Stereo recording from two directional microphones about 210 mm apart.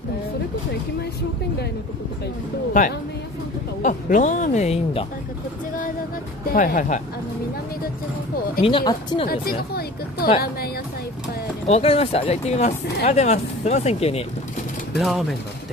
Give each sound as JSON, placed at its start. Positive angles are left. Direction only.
{"t": 3.8, "sound": "speech", "side_deg": 35}
{"t": 6.5, "sound": "speech", "side_deg": 40}
{"t": 8.6, "sound": "speech", "side_deg": 25}
{"t": 9.3, "sound": "speech", "side_deg": 45}
{"t": 11.6, "sound": "speech", "side_deg": 30}
{"t": 15.0, "sound": "speech", "side_deg": 0}